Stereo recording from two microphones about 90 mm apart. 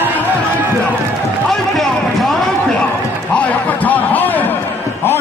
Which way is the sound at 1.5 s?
5° left (ahead or behind).